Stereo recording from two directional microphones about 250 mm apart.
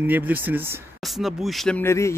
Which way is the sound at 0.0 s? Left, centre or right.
Centre.